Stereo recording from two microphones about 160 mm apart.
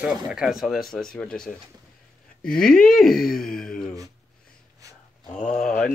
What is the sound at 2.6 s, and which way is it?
Speech, 60° left (ahead or behind).